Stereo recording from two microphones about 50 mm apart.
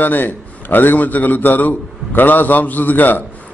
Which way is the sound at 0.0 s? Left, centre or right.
Left.